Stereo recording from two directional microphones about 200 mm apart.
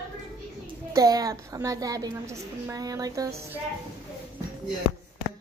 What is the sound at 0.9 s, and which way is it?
A woman's voice, 15° right (ahead or behind).